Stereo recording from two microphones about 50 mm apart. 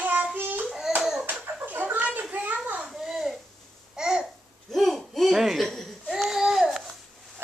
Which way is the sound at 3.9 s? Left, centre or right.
Centre.